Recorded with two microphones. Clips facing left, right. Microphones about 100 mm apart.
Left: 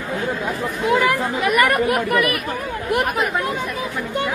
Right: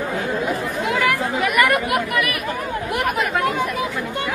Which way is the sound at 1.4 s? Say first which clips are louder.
Left 1 dB; 35° left (ahead or behind).